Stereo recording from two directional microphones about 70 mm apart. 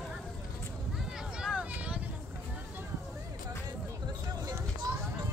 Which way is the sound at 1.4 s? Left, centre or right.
Centre.